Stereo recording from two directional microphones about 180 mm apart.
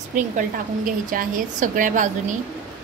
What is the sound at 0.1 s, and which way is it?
A woman's voice, 45° right (ahead or behind).